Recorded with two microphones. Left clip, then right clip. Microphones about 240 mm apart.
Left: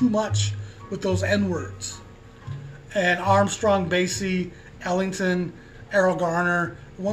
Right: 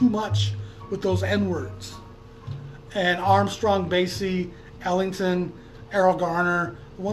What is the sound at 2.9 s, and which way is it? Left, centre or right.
Speech, centre.